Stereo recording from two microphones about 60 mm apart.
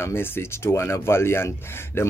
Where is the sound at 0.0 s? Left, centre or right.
Left.